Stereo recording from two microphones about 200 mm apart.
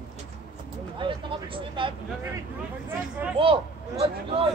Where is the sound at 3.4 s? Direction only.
25° right (ahead or behind).